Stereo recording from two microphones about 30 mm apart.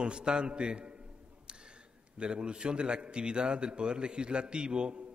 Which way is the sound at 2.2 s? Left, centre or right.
Right.